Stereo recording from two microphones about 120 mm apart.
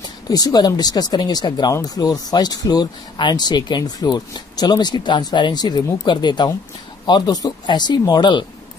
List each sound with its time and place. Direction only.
0.3 s speech: 30° left (ahead or behind)